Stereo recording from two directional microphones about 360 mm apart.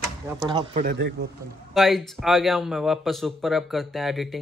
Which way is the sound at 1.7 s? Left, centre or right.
Centre.